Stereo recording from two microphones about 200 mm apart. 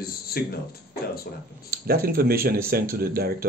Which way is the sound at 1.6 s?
50° right (ahead or behind).